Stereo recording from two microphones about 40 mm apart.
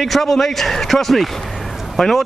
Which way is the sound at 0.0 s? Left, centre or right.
Centre.